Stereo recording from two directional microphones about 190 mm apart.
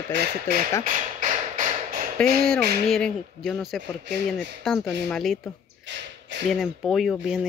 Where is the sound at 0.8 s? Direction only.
40° right (ahead or behind).